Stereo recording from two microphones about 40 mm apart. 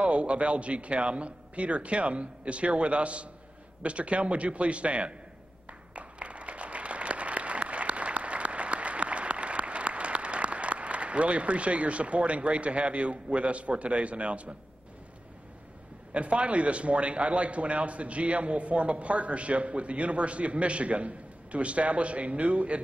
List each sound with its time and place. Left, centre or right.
0.0 s a man's voice: right
5.9 s applause: right
16.1 s a man's voice: right